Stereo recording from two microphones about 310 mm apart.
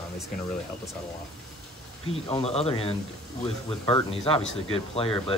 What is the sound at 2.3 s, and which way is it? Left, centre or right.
Speech, centre.